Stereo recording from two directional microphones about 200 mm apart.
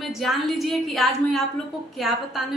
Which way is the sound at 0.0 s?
Centre (ahead or behind).